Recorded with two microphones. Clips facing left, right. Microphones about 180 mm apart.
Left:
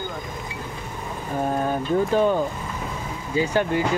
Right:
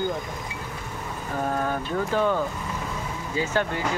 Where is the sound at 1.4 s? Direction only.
20° left (ahead or behind).